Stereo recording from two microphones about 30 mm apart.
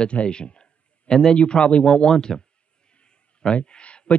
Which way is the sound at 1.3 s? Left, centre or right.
Left.